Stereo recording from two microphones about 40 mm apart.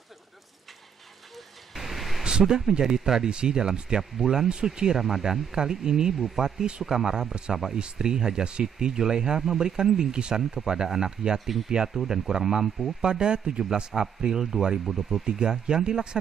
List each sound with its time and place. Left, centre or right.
1.8 s a sound: centre
2.2 s speech: centre
4.5 s speech: right
7.8 s speech: centre
14.9 s speech: centre
15.2 s speech: centre